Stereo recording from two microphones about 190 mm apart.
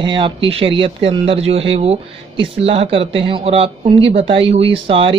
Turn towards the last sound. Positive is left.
turn(degrees=-30)  # may be behind; listen again after turning